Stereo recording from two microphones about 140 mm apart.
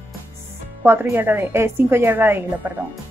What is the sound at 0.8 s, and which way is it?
A woman's voice, 15° right (ahead or behind).